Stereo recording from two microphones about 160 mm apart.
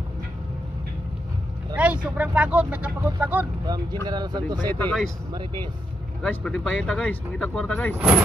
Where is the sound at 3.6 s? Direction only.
25° right (ahead or behind).